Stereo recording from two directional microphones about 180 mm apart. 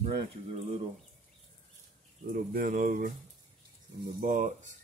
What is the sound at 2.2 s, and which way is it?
Speech, 55° right (ahead or behind).